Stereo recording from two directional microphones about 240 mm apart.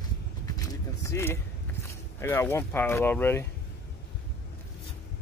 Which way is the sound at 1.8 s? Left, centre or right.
Centre.